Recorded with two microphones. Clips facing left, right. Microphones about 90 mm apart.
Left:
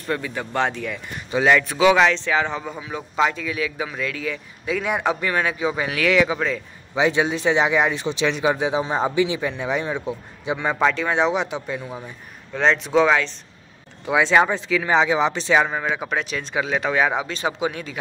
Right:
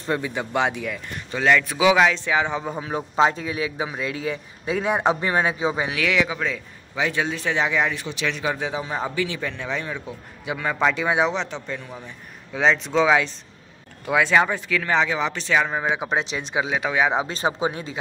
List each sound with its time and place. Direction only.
0.0 s a man's voice: 20° right (ahead or behind)
1.1 s speech: 10° left (ahead or behind)
1.6 s a man's voice: 5° right (ahead or behind)
2.7 s a man's voice: 40° right (ahead or behind); by 6.2 s 10° right (ahead or behind)
6.2 s speech: centre (ahead or behind)
7.0 s speech: 20° left (ahead or behind)
11.0 s a man's voice: 10° right (ahead or behind)
11.3 s speech: 10° left (ahead or behind)
12.5 s speech: centre (ahead or behind)
14.2 s speech: 20° left (ahead or behind)
15.8 s a man's voice: 15° right (ahead or behind)
17.1 s speech: 35° right (ahead or behind)